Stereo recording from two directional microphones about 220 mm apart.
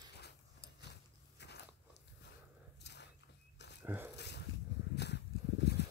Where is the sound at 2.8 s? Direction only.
50° left (ahead or behind).